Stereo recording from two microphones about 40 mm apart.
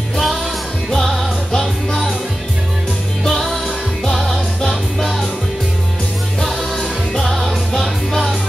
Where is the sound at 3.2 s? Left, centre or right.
Centre.